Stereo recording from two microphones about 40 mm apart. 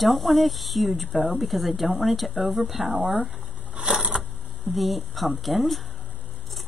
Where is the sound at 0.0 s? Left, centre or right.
Centre.